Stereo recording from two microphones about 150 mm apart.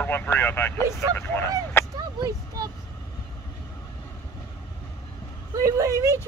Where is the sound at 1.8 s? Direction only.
15° left (ahead or behind).